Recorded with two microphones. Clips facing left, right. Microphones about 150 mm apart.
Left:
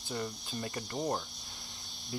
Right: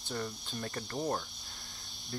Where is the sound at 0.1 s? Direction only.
5° left (ahead or behind).